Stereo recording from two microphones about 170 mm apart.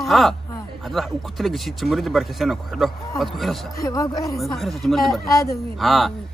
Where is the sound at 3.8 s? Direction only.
20° left (ahead or behind).